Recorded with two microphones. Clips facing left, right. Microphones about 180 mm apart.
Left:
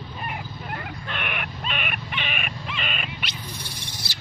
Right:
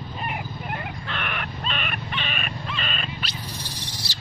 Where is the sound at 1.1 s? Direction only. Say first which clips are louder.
Even; 15° left (ahead or behind).